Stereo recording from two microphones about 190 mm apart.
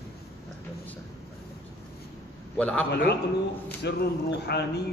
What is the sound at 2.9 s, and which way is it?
Speech, 60° left (ahead or behind).